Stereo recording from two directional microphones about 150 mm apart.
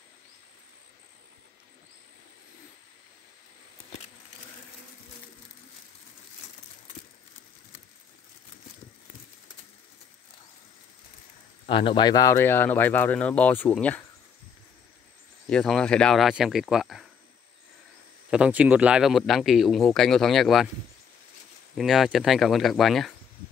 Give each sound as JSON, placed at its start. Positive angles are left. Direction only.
{"t": 11.6, "sound": "speech", "side_deg": 35}
{"t": 15.4, "sound": "speech", "side_deg": 5}
{"t": 18.3, "sound": "speech", "side_deg": -10}
{"t": 21.7, "sound": "speech", "side_deg": 0}